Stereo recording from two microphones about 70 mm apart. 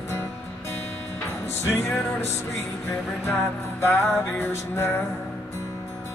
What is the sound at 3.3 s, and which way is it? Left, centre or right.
Music, left.